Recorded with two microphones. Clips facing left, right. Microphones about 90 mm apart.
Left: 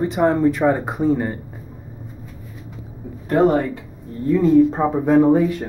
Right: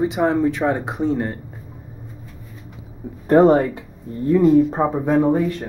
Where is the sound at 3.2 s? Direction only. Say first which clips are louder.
Right 3 dB; 30° right (ahead or behind).